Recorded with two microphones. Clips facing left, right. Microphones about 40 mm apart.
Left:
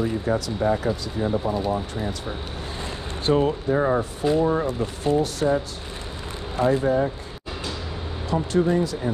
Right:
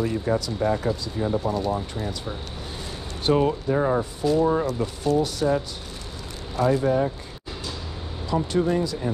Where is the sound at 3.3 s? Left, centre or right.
Left.